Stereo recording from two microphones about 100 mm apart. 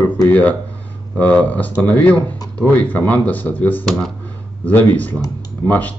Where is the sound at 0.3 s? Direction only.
15° left (ahead or behind).